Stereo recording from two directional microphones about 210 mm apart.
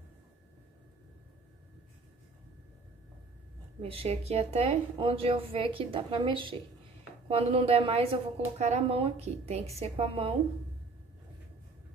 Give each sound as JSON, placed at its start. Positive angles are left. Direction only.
{"t": 3.8, "sound": "a woman's voice", "side_deg": -25}